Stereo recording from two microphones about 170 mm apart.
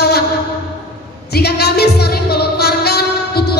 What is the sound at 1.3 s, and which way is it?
Music, 70° left (ahead or behind).